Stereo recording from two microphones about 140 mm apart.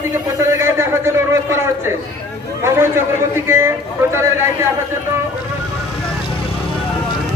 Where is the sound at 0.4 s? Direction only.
20° right (ahead or behind).